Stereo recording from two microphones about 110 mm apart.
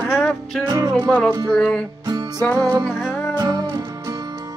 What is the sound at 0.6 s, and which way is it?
Music, 30° right (ahead or behind).